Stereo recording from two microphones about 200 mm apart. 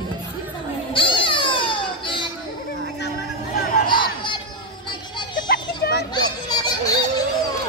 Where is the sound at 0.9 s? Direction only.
25° left (ahead or behind).